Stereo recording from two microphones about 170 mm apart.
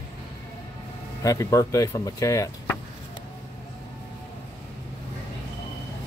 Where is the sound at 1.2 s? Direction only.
20° left (ahead or behind).